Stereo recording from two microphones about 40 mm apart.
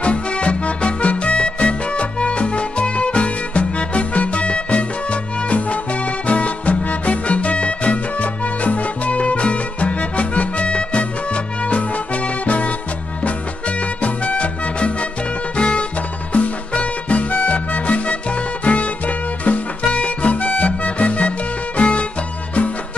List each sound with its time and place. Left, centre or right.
0.0 s music: left